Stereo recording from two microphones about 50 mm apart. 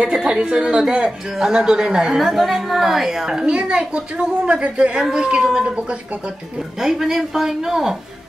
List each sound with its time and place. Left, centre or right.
0.0 s a woman's voice: centre
6.8 s a woman's voice: centre